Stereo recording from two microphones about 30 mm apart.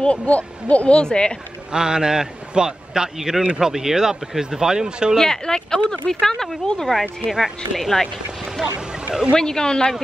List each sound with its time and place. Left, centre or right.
0.1 s speech: left
1.0 s speech: left
1.7 s a man's voice: right
3.2 s a man's voice: centre
5.2 s speech: left
6.2 s speech: centre
6.6 s speech: left
6.9 s speech: centre
8.6 s a man's voice: centre
9.3 s speech: left